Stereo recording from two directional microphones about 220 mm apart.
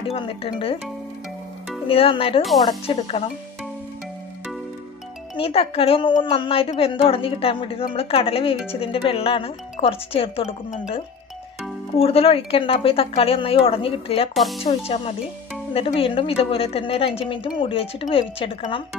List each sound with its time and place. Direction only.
0.0 s a woman's voice: 25° left (ahead or behind)
1.9 s a woman's voice: 25° left (ahead or behind)
5.4 s a woman's voice: 25° left (ahead or behind)
12.0 s a woman's voice: 25° left (ahead or behind)
14.3 s speech: centre (ahead or behind)
14.9 s a woman's voice: 25° left (ahead or behind)